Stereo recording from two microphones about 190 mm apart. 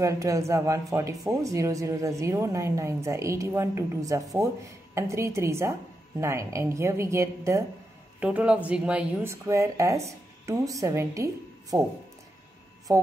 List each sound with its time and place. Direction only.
0.0 s speech: 15° right (ahead or behind)
12.9 s speech: 15° right (ahead or behind)